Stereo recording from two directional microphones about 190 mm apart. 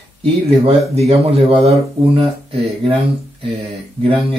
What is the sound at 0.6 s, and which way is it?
Speech, 35° right (ahead or behind).